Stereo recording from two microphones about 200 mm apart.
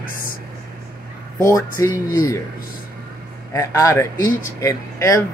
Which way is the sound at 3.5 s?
15° left (ahead or behind).